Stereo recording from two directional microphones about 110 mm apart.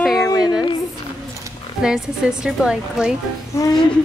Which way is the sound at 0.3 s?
35° left (ahead or behind).